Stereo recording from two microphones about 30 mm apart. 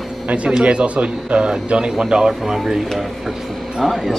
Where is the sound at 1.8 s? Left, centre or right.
Right; by 2.8 s centre.